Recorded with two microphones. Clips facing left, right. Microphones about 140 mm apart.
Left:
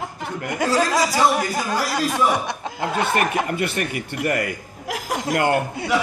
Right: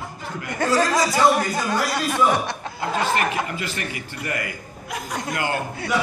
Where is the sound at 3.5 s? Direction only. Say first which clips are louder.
Left 6 dB; 60° left (ahead or behind).